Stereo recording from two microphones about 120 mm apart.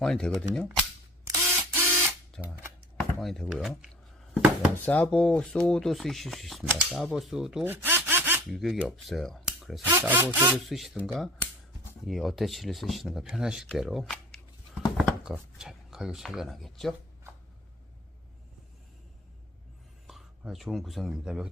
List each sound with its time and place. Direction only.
0.0 s speech: 5° left (ahead or behind)
1.2 s camera: 20° right (ahead or behind)
2.4 s speech: 10° left (ahead or behind)
4.3 s a sound: 10° right (ahead or behind)
4.8 s speech: 10° left (ahead or behind); by 7.6 s 5° right (ahead or behind)
7.6 s sawing: 20° right (ahead or behind)
8.5 s speech: centre (ahead or behind)
9.8 s speech: 20° right (ahead or behind)
10.7 s speech: centre (ahead or behind)
14.1 s shuffling cards: centre (ahead or behind)
15.5 s speech: 5° right (ahead or behind)
20.1 s speech: centre (ahead or behind)